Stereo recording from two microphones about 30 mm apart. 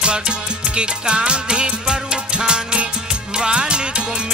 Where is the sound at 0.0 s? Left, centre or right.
Right.